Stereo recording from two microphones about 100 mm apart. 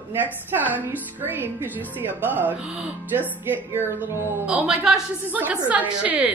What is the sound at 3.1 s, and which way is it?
Speech, 20° right (ahead or behind).